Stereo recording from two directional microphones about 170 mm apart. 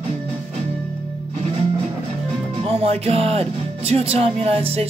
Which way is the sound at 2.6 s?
35° right (ahead or behind).